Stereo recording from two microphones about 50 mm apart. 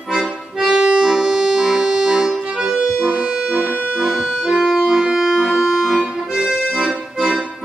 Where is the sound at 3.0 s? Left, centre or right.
Centre.